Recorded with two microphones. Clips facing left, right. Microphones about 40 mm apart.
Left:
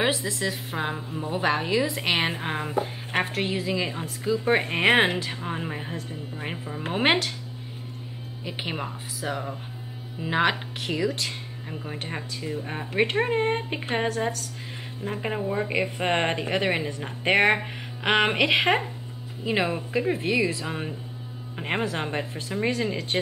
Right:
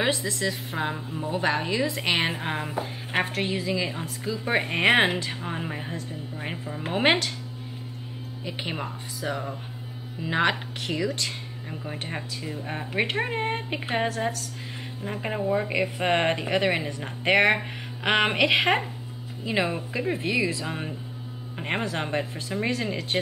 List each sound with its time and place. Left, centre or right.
0.0 s speech: centre
8.5 s speech: centre